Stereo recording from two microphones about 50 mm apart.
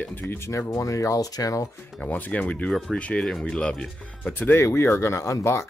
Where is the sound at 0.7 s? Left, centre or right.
Left.